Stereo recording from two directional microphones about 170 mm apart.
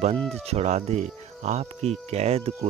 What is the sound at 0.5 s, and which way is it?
Speech, 40° right (ahead or behind).